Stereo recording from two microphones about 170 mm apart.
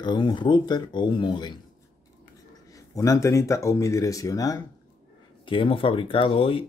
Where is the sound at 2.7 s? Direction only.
20° left (ahead or behind).